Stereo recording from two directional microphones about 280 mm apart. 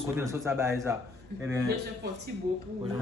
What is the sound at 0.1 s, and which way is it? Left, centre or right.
Speech, centre.